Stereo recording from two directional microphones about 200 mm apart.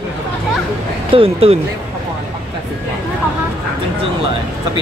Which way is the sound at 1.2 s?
30° right (ahead or behind).